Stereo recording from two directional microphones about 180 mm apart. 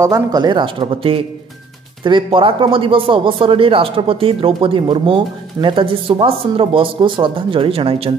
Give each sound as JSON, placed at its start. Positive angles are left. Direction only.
{"t": 0.0, "sound": "speech", "side_deg": -20}